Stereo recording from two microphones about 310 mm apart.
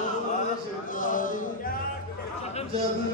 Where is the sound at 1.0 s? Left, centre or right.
Left.